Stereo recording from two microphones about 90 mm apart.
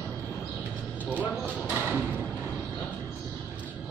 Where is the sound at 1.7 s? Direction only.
15° right (ahead or behind).